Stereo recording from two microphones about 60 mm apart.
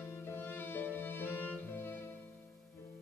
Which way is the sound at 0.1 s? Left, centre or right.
Left.